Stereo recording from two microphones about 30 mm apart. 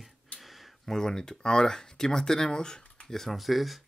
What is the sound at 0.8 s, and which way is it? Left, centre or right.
Speech, centre.